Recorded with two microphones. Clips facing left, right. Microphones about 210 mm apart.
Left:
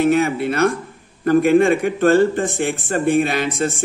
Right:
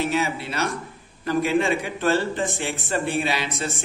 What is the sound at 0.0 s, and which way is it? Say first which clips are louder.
A man's voice: left 8 dB; 55° left (ahead or behind).